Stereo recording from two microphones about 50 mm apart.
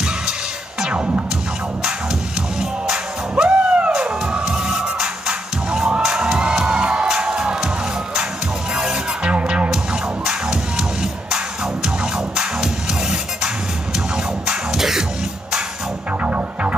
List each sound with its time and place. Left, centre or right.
0.8 s music: right
2.9 s music: centre
8.7 s music: centre
14.8 s music: centre
16.3 s music: right